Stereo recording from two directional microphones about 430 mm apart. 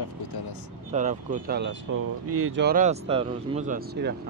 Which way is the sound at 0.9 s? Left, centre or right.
Centre.